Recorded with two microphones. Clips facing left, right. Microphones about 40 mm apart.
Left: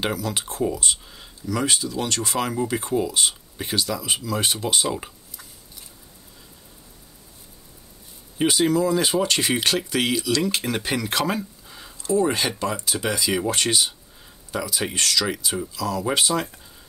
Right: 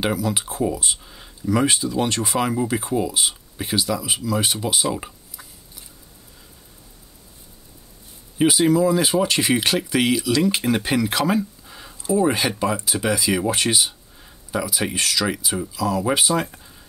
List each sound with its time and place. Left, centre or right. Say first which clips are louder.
0.0 s speech: right 3 dB; centre
1.4 s speech: right 4 dB; centre
2.3 s speech: right 2 dB; centre
8.4 s speech: right 3 dB; centre